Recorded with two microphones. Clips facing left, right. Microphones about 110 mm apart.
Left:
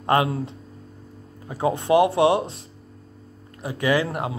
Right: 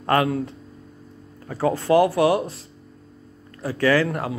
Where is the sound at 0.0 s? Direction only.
20° left (ahead or behind).